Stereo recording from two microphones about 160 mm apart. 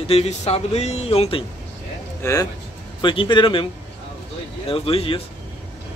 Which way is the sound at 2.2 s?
20° left (ahead or behind).